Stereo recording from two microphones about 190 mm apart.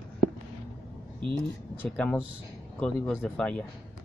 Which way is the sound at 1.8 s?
10° left (ahead or behind).